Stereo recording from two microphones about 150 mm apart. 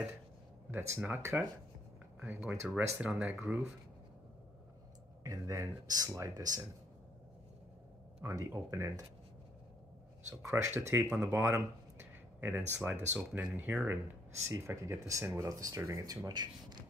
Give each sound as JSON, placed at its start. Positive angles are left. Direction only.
{"t": 0.7, "sound": "speech", "side_deg": -15}
{"t": 5.2, "sound": "speech", "side_deg": -20}
{"t": 8.2, "sound": "speech", "side_deg": -20}
{"t": 10.3, "sound": "speech", "side_deg": -20}